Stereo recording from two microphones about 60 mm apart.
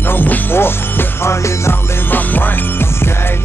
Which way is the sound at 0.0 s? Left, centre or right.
Left.